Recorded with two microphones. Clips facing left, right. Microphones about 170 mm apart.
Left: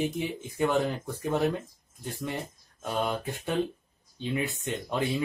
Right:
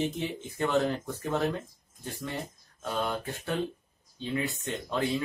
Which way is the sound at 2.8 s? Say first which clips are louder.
Left 2 dB; 15° left (ahead or behind).